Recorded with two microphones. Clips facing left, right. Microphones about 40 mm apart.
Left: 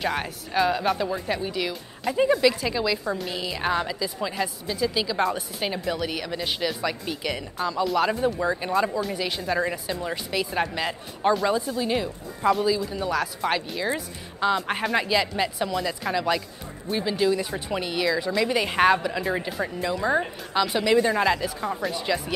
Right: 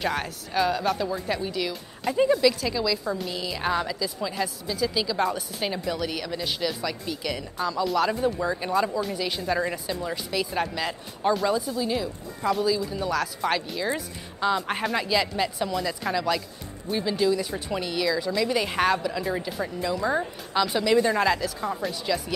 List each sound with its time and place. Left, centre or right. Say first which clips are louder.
0.0 s a woman's voice: left 1 dB; centre
12.6 s a woman's voice: left 1 dB; centre